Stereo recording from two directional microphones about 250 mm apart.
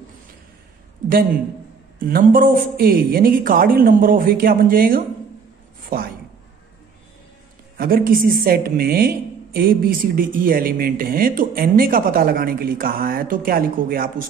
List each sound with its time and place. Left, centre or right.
2.0 s speech: right
7.7 s speech: right